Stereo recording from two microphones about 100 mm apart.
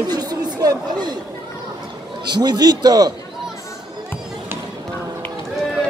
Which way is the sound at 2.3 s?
45° right (ahead or behind).